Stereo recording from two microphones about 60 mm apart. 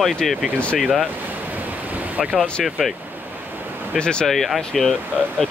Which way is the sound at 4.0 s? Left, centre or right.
Centre.